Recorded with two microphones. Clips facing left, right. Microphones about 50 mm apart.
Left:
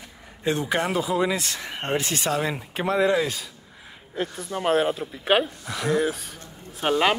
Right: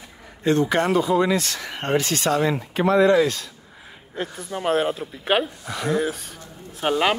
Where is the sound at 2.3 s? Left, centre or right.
Centre.